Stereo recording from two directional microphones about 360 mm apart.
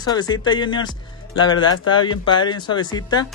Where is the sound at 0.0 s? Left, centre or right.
Centre.